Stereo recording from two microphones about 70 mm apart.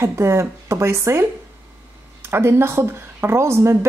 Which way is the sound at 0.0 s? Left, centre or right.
Right.